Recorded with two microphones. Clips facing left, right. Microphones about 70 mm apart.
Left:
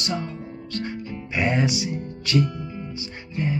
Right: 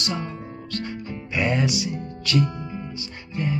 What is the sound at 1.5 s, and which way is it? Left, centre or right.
Speech, left.